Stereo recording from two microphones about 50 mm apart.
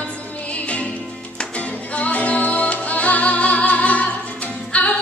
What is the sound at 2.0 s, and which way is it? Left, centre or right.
Music, left.